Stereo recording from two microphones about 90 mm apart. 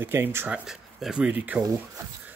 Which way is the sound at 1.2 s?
15° right (ahead or behind).